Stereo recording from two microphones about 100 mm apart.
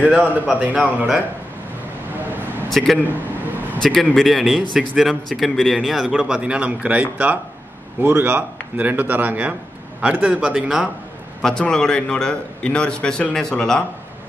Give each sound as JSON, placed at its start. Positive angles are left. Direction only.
{"t": 0.0, "sound": "a man's voice", "side_deg": -15}
{"t": 2.7, "sound": "a man's voice", "side_deg": 0}
{"t": 11.4, "sound": "a man's voice", "side_deg": 5}